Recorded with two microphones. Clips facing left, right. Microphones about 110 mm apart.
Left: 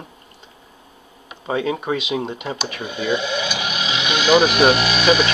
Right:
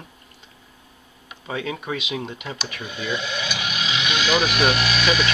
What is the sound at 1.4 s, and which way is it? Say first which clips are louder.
Speech: left 7 dB; 35° left (ahead or behind).